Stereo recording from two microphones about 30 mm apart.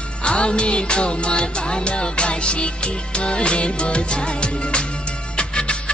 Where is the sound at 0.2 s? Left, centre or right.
Left.